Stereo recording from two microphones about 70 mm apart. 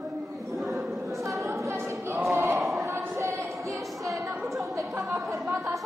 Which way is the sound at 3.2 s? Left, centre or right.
Right.